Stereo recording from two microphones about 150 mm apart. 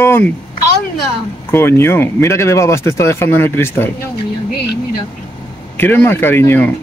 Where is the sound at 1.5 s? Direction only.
15° left (ahead or behind).